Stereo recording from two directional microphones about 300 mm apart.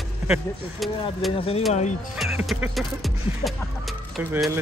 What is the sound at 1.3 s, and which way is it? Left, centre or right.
Speech, centre.